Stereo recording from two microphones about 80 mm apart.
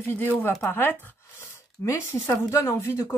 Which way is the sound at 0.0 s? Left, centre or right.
Left.